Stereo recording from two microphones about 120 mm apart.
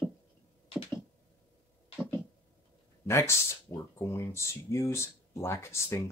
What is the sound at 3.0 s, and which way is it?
Speech, 25° left (ahead or behind).